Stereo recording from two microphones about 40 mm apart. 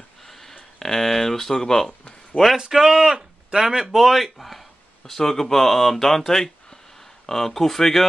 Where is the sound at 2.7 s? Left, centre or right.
Centre.